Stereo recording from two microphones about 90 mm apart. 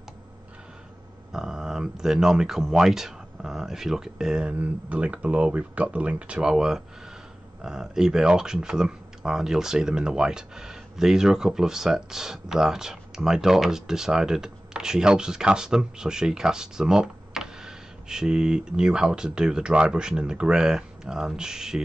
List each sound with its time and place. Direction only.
1.3 s speech: 5° right (ahead or behind)